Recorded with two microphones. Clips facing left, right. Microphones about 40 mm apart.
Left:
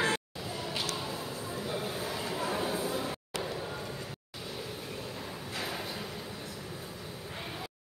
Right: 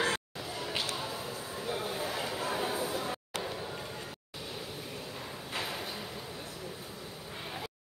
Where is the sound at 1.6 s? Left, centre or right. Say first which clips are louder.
Right 1 dB; centre.